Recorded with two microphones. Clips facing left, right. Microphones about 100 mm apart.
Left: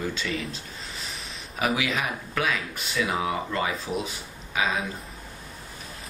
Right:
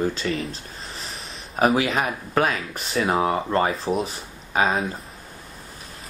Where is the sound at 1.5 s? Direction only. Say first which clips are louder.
Right 6 dB; 40° right (ahead or behind).